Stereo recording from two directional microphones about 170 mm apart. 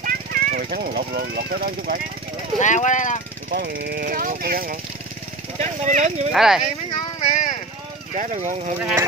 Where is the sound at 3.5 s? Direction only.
80° right; by 4.8 s 60° right (ahead or behind).